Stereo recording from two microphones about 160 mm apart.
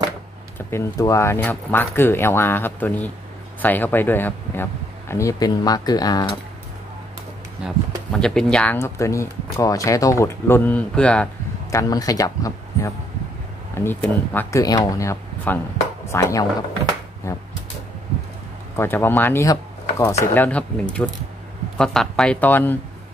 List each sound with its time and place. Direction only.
0.6 s speech: 15° left (ahead or behind)
7.6 s speech: 5° left (ahead or behind)
8.7 s speech: 15° left (ahead or behind)
11.7 s speech: 20° left (ahead or behind)
18.8 s speech: 15° left (ahead or behind)